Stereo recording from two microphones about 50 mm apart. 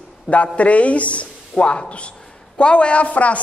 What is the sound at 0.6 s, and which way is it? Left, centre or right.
A man's voice, left.